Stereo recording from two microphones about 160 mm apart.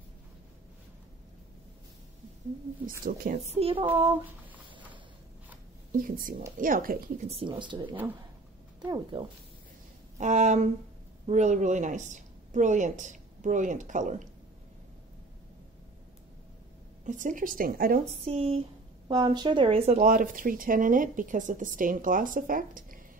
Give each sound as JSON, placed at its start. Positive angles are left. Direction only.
{"t": 3.1, "sound": "speech", "side_deg": -50}
{"t": 3.8, "sound": "a sound", "side_deg": -10}
{"t": 5.9, "sound": "speech", "side_deg": -60}
{"t": 7.2, "sound": "a woman's voice", "side_deg": -35}
{"t": 10.1, "sound": "speech", "side_deg": -45}
{"t": 17.0, "sound": "speech", "side_deg": -50}
{"t": 18.2, "sound": "a woman's voice", "side_deg": -40}
{"t": 19.0, "sound": "a woman's voice", "side_deg": -30}
{"t": 20.0, "sound": "speech", "side_deg": -55}